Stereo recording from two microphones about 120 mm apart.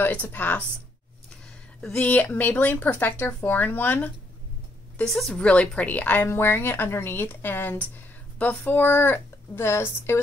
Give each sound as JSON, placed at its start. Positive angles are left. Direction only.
{"t": 0.0, "sound": "a woman's voice", "side_deg": 15}
{"t": 1.8, "sound": "a woman's voice", "side_deg": 5}
{"t": 4.9, "sound": "a woman's voice", "side_deg": 5}